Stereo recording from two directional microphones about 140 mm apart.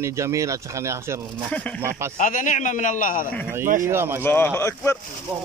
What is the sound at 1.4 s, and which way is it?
Speech, 10° left (ahead or behind).